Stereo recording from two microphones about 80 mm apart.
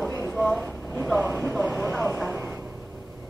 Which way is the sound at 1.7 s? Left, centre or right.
Centre.